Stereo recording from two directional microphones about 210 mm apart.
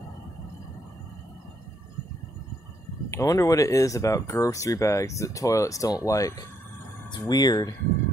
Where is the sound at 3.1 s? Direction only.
15° left (ahead or behind).